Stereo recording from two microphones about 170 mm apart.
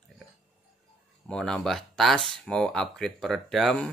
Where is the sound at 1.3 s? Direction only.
5° left (ahead or behind).